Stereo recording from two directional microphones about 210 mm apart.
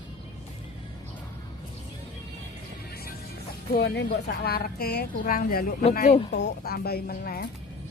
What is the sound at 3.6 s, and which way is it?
A woman's voice, 45° left (ahead or behind).